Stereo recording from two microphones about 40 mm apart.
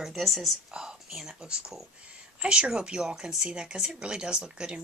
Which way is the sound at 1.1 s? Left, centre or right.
Centre.